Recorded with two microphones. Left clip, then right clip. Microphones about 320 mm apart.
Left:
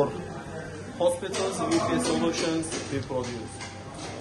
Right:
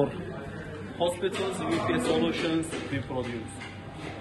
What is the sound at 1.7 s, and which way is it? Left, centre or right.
Speech, centre.